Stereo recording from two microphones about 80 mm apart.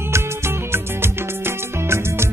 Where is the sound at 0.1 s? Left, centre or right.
Right.